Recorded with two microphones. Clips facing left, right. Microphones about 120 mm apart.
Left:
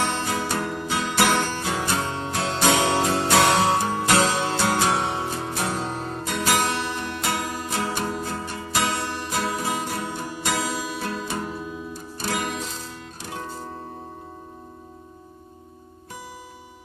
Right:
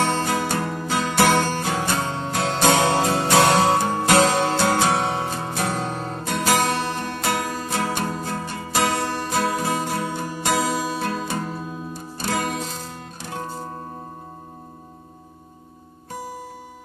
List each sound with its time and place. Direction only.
0.0 s music: 45° right (ahead or behind)
4.6 s music: 30° right (ahead or behind)
4.9 s music: 45° right (ahead or behind)
10.0 s music: 55° right (ahead or behind)